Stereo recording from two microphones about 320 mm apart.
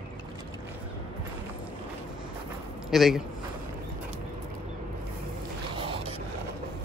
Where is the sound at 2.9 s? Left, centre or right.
Centre.